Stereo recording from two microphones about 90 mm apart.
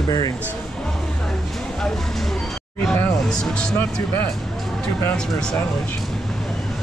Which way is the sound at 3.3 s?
5° left (ahead or behind).